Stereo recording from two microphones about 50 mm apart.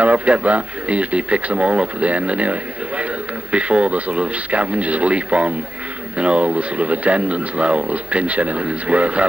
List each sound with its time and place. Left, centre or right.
0.0 s speech: right